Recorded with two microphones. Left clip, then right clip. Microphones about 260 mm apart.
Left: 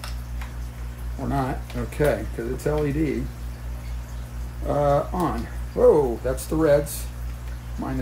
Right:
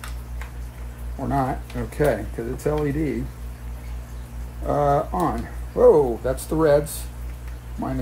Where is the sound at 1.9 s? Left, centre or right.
Centre.